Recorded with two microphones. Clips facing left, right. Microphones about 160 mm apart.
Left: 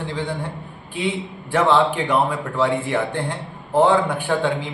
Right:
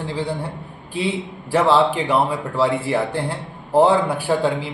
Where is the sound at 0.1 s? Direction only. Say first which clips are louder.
Right 3 dB; 35° right (ahead or behind).